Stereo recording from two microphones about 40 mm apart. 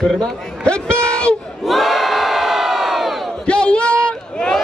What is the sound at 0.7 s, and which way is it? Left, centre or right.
Speech, left.